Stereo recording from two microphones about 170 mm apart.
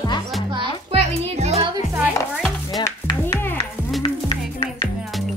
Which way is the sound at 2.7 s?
25° left (ahead or behind).